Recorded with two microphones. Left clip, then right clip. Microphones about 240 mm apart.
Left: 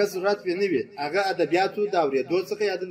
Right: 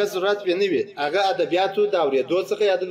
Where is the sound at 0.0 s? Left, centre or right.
Left.